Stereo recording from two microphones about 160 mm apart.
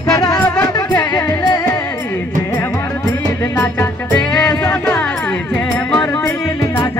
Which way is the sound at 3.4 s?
15° left (ahead or behind).